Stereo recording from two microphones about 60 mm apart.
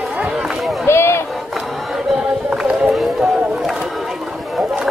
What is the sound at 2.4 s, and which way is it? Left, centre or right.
Run, centre.